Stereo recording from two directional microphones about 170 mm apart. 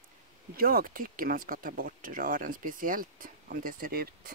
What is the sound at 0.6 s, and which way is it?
Speech, 60° right (ahead or behind).